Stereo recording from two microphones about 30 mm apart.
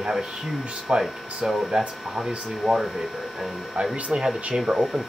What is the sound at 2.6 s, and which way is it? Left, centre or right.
Speech, centre.